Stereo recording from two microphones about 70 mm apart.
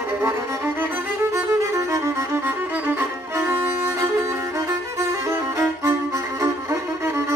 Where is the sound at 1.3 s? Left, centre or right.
Right.